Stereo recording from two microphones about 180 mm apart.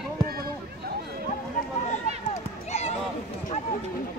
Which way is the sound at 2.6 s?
35° left (ahead or behind).